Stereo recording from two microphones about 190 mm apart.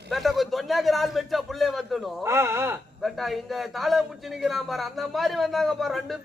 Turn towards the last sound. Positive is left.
turn(degrees=0)  # may be behind; listen again after turning